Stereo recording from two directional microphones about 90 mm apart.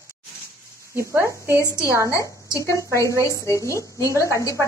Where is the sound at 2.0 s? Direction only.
35° left (ahead or behind).